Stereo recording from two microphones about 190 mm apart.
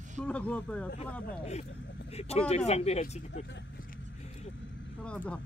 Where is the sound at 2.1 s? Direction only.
35° left (ahead or behind).